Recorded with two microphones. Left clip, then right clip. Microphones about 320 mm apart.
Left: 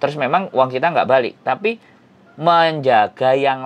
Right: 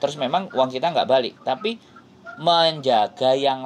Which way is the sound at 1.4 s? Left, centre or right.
Left.